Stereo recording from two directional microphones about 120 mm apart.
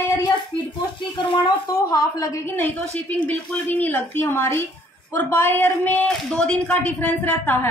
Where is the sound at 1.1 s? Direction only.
40° left (ahead or behind).